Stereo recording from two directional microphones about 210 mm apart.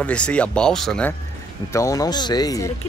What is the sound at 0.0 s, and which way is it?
Speech, 5° left (ahead or behind).